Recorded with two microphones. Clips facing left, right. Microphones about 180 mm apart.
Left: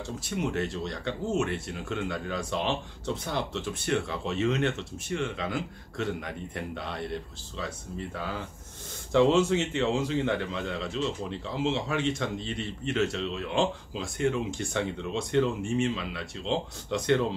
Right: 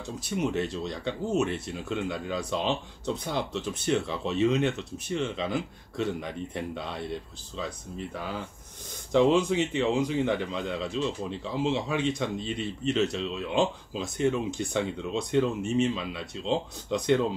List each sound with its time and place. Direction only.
0.4 s speech: 20° right (ahead or behind)
9.1 s speech: 15° right (ahead or behind)